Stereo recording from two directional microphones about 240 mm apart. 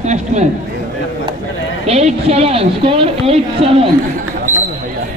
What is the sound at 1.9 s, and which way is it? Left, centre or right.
A woman's voice, right.